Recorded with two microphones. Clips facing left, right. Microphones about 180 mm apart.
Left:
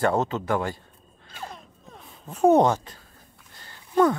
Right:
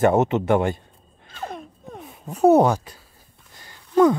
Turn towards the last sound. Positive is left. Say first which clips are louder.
# right 4 dB
turn(degrees=-15)  # may be behind; listen again after turning